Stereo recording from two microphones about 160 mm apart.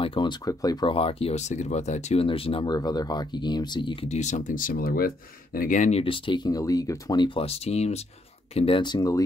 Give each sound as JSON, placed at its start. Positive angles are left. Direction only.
{"t": 0.0, "sound": "speech", "side_deg": 30}